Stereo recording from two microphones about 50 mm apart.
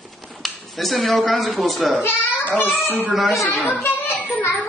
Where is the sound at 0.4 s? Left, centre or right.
Centre.